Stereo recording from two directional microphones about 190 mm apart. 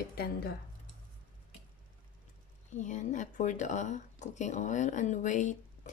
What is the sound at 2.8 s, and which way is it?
Speech, 40° left (ahead or behind).